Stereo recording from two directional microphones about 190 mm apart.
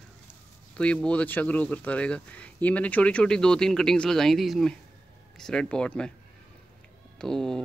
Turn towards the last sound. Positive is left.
turn(degrees=5)  # may be behind; listen again after turning